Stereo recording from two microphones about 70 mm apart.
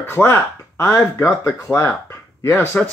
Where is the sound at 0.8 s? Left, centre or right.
Left.